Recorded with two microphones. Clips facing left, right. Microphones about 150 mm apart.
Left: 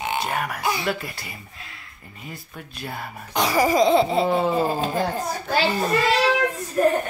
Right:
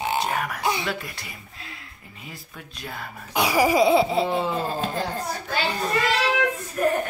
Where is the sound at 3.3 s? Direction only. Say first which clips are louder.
Even; 10° right (ahead or behind).